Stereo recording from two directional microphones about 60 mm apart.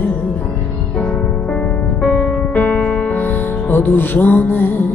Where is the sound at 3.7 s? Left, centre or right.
Left.